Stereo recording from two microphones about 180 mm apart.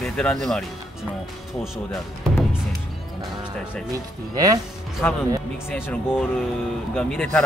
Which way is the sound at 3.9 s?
20° right (ahead or behind).